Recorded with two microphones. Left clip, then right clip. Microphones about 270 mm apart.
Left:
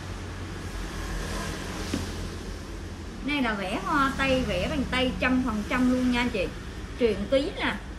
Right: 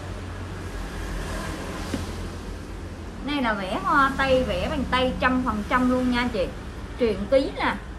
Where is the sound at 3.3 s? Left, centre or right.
Centre.